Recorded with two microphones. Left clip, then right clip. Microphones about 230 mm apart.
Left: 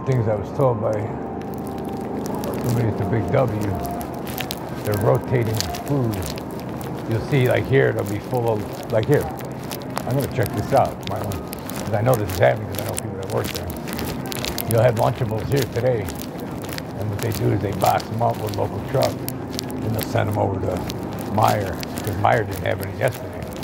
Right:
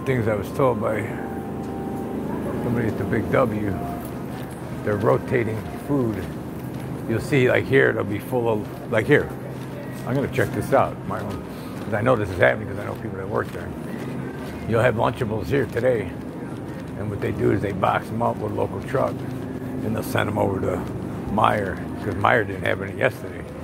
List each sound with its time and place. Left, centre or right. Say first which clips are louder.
0.0 s speech: even; right
3.1 s speech: even; right
4.8 s speech: even; right
7.2 s speech: right 1 dB; right
10.3 s speech: left 1 dB; right
11.9 s speech: even; right
14.7 s speech: left 1 dB; right
17.5 s speech: left 2 dB; right
20.1 s speech: even; right